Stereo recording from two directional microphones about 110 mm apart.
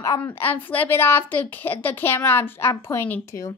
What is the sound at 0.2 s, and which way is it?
A woman's voice, 20° left (ahead or behind).